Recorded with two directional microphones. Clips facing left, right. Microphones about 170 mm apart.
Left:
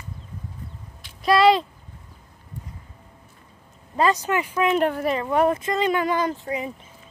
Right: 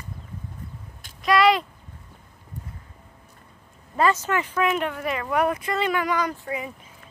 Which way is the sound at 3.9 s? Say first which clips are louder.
Left 1 dB; 15° left (ahead or behind).